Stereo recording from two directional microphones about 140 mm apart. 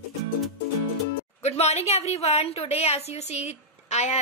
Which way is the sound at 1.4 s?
50° left (ahead or behind).